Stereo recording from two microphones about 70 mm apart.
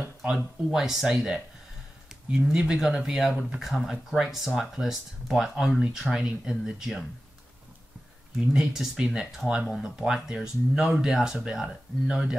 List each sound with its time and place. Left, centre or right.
0.0 s a sound: right
0.7 s speech: centre
2.5 s speech: centre
8.5 s speech: centre